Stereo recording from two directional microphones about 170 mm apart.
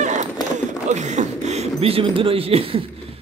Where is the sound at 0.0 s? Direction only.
45° right (ahead or behind).